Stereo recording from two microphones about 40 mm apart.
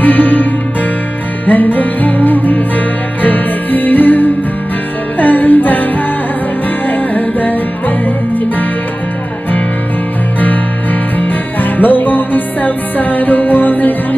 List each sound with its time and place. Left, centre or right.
0.0 s music: left
6.9 s music: left
11.1 s music: left